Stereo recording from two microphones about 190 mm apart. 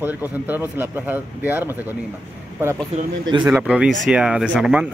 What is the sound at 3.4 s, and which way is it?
Speech, 5° right (ahead or behind).